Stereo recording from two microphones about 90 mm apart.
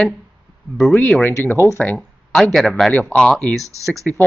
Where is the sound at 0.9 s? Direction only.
15° left (ahead or behind).